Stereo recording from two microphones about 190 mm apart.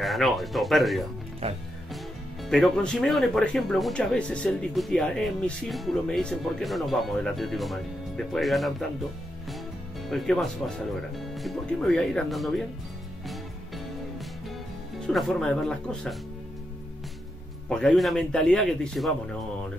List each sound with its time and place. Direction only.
0.0 s speech: centre (ahead or behind)
1.4 s speech: 30° right (ahead or behind)
2.4 s speech: centre (ahead or behind)
10.0 s speech: centre (ahead or behind)
15.0 s speech: centre (ahead or behind)
17.6 s speech: 5° left (ahead or behind)